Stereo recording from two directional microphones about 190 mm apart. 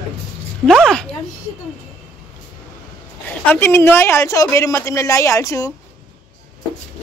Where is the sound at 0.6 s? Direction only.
Centre (ahead or behind).